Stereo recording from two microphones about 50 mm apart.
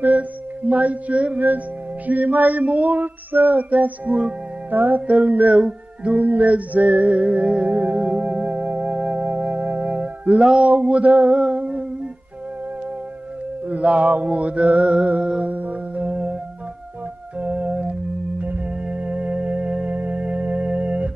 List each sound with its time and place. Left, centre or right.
0.0 s mantra: right
2.0 s music: right
4.6 s music: right
8.0 s music: right
13.7 s mantra: right
15.5 s music: right
17.4 s organ: right
18.4 s music: right